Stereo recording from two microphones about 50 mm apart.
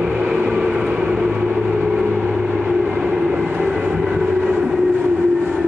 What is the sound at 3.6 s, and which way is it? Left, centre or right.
Train, centre.